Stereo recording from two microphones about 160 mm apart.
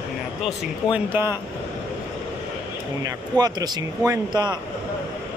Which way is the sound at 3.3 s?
25° right (ahead or behind).